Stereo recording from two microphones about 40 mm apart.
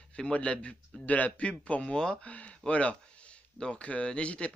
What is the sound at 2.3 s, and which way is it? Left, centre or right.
Speech, left.